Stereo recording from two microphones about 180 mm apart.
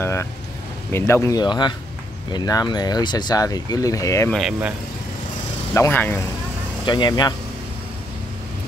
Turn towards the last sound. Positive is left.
turn(degrees=25)  # may be behind; listen again after turning